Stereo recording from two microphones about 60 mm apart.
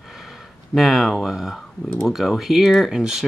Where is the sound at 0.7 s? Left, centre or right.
Centre.